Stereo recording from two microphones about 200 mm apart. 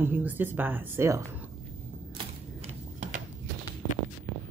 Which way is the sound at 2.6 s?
35° right (ahead or behind).